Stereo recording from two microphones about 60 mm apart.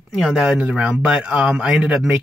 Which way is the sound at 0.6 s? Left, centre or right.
Centre.